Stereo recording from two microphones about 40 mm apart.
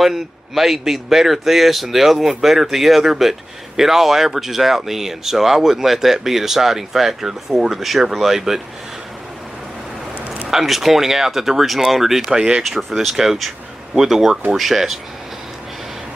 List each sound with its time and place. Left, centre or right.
0.0 s a man's voice: centre
10.5 s a man's voice: centre